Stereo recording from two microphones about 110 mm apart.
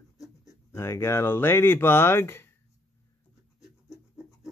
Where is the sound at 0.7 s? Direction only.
25° left (ahead or behind).